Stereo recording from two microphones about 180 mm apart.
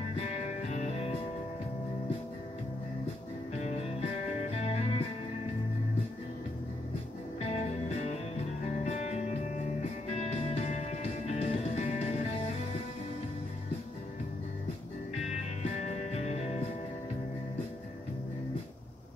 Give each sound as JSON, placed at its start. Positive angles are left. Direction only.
{"t": 0.1, "sound": "music", "side_deg": 40}
{"t": 3.6, "sound": "music", "side_deg": 40}
{"t": 7.3, "sound": "music", "side_deg": 35}
{"t": 15.2, "sound": "music", "side_deg": 40}